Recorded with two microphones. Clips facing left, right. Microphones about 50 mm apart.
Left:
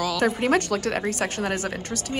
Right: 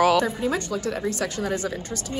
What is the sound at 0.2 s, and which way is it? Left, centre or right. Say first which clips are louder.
Speech: left 3 dB; left.